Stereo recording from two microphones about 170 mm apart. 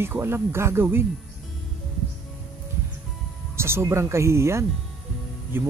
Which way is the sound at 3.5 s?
15° right (ahead or behind).